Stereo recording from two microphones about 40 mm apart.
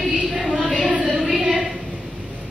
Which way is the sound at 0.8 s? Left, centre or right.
Right.